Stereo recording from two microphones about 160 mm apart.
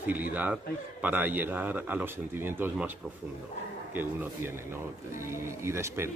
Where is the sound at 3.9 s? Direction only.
10° right (ahead or behind).